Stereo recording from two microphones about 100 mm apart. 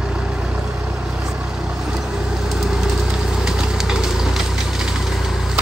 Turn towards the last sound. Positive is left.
turn(degrees=-5)  # may be behind; listen again after turning